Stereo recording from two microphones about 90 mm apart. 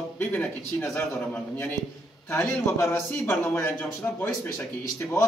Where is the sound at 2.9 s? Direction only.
10° left (ahead or behind).